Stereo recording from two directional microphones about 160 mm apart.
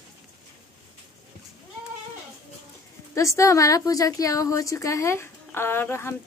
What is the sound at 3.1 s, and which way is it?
Speech, 20° left (ahead or behind).